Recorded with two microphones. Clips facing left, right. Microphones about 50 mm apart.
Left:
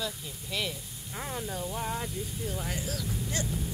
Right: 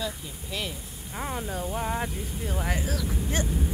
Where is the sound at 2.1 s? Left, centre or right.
Right.